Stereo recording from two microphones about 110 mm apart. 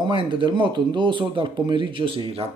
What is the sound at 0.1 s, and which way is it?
Speech, 50° right (ahead or behind).